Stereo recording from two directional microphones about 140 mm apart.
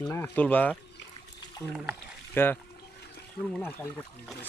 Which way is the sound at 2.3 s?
15° left (ahead or behind).